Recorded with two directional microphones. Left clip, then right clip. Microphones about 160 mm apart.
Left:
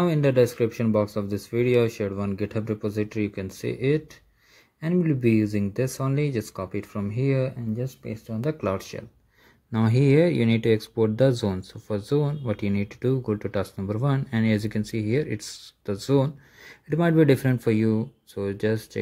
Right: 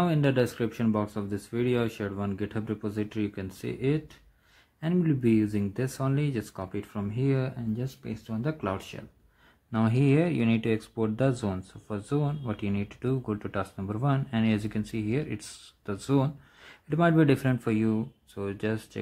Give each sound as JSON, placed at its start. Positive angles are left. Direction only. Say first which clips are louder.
{"t": 0.0, "sound": "speech", "louder": "left 5 dB", "side_deg": 15}
{"t": 4.7, "sound": "speech", "louder": "left 3 dB", "side_deg": 15}
{"t": 8.5, "sound": "speech", "louder": "left 5 dB", "side_deg": 20}